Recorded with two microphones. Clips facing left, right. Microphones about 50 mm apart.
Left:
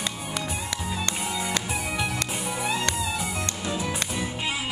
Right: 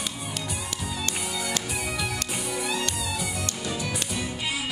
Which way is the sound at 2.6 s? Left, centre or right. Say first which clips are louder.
Left 5 dB; left.